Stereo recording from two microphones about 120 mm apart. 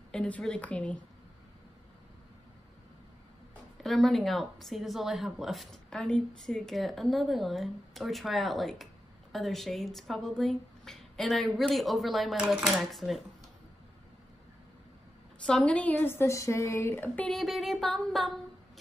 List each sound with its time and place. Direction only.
0.1 s speech: 10° left (ahead or behind)
3.8 s a woman's voice: centre (ahead or behind)
15.4 s speech: 10° left (ahead or behind)
17.3 s a woman's voice: centre (ahead or behind)